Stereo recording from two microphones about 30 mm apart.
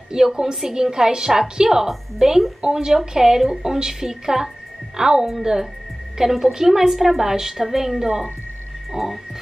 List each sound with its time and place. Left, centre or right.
0.1 s a woman's voice: centre
6.3 s a woman's voice: centre